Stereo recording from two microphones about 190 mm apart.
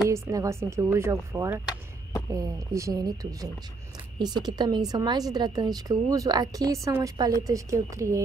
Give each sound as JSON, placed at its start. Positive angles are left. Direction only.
{"t": 0.1, "sound": "a woman's voice", "side_deg": -15}